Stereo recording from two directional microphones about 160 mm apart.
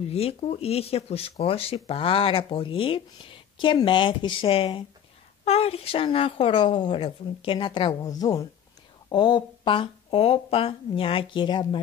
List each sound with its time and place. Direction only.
0.1 s speech: 40° left (ahead or behind)